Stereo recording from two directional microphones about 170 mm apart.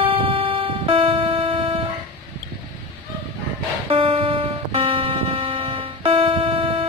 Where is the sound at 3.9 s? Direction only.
30° right (ahead or behind).